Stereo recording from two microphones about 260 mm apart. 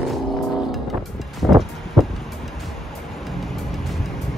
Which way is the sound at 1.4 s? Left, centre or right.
Centre.